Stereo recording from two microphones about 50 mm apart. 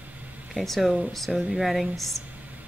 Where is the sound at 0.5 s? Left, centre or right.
Centre.